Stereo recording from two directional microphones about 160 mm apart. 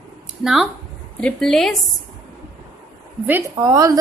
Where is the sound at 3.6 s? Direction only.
20° right (ahead or behind).